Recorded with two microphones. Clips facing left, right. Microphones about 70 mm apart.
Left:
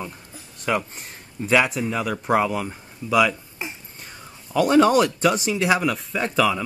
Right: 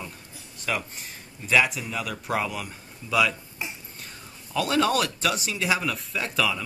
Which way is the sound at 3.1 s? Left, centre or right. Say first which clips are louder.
Left 5 dB; centre.